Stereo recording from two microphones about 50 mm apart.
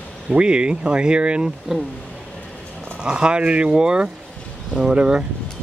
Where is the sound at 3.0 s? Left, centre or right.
Centre.